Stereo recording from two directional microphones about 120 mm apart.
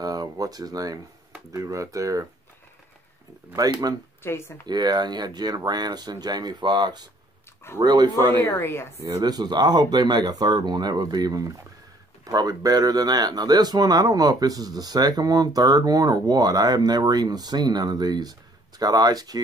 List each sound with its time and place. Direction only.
0.0 s speech: 30° right (ahead or behind)
3.5 s speech: 30° right (ahead or behind)
4.2 s speech: 20° left (ahead or behind)
4.6 s speech: 35° right (ahead or behind)
8.4 s speech: 15° left (ahead or behind)
9.0 s speech: 30° right (ahead or behind)